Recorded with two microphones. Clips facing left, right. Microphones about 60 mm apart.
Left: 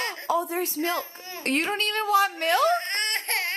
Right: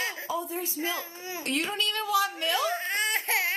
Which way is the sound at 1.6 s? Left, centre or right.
Left.